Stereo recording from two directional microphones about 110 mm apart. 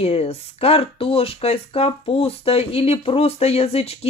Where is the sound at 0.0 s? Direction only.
65° left (ahead or behind).